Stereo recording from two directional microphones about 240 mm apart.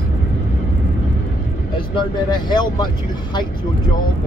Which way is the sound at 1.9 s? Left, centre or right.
Centre.